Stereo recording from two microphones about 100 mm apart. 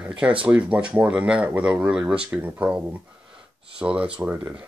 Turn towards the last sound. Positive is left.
turn(degrees=-10)  # may be behind; listen again after turning